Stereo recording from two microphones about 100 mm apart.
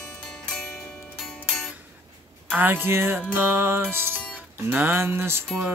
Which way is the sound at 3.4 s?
20° right (ahead or behind).